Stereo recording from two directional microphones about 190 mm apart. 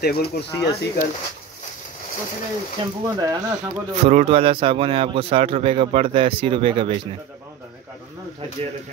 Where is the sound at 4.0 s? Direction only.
35° right (ahead or behind).